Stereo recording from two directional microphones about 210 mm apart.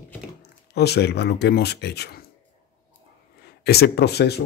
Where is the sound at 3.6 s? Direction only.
50° left (ahead or behind).